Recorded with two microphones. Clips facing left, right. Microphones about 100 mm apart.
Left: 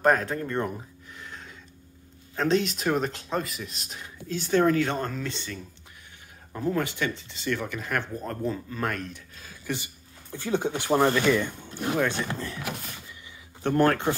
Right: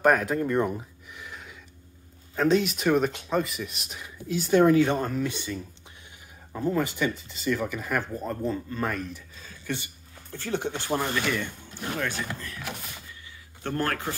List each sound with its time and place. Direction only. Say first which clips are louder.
0.0 s speech: right 1 dB; 5° right (ahead or behind)
9.5 s speech: even; 15° left (ahead or behind)
12.3 s speech: left 4 dB; 30° left (ahead or behind)
13.6 s speech: left 7 dB; 20° left (ahead or behind)